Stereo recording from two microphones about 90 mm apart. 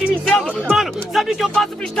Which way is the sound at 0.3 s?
10° left (ahead or behind).